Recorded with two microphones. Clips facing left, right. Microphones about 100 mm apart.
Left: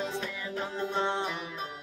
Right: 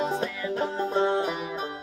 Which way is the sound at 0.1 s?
35° right (ahead or behind).